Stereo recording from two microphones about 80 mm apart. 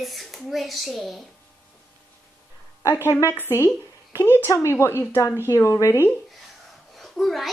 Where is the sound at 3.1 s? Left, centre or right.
Left.